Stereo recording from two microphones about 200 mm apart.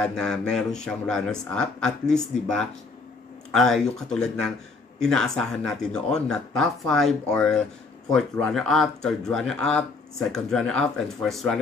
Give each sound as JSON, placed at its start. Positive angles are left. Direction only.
{"t": 0.0, "sound": "speech", "side_deg": 5}